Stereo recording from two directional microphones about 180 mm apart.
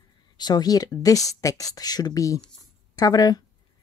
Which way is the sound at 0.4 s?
20° left (ahead or behind).